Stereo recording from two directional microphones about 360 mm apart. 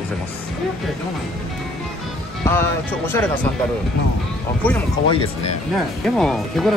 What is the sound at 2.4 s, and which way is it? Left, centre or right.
Speech, centre.